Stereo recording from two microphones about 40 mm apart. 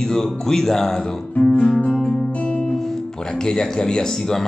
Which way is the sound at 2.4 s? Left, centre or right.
Left.